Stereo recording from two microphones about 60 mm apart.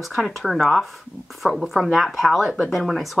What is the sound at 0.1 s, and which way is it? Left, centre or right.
Speech, centre.